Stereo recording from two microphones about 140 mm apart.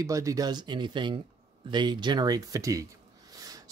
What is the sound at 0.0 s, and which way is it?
Speech, 25° right (ahead or behind).